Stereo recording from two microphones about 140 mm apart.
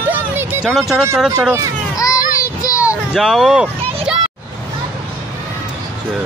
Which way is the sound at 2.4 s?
25° left (ahead or behind).